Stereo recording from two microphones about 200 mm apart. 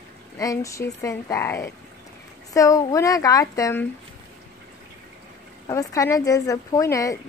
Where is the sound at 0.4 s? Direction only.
15° left (ahead or behind).